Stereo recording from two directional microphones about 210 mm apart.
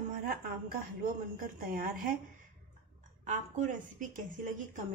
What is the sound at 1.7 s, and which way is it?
Speech, 40° right (ahead or behind).